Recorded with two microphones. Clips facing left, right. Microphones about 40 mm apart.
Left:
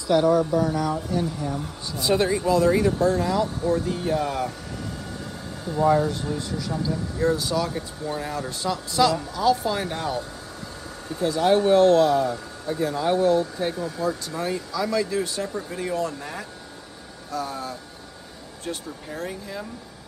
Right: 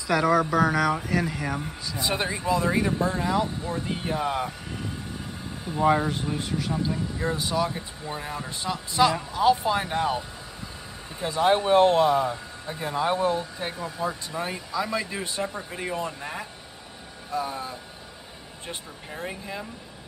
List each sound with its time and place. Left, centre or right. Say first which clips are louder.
0.7 s speech: right 2 dB; right
2.0 s speech: left 6 dB; centre
5.7 s speech: left 2 dB; right